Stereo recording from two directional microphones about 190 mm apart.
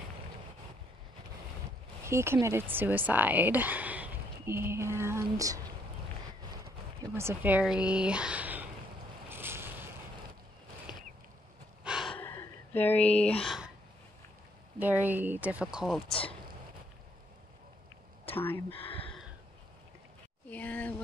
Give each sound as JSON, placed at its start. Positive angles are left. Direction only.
{"t": 2.0, "sound": "speech", "side_deg": -15}
{"t": 7.0, "sound": "speech", "side_deg": -15}
{"t": 9.3, "sound": "vehicle", "side_deg": -10}
{"t": 11.8, "sound": "gasp", "side_deg": -5}
{"t": 12.2, "sound": "a sound", "side_deg": 10}
{"t": 14.8, "sound": "speech", "side_deg": -10}
{"t": 18.3, "sound": "speech", "side_deg": 10}
{"t": 18.7, "sound": "speech", "side_deg": 30}
{"t": 20.4, "sound": "a sound", "side_deg": 10}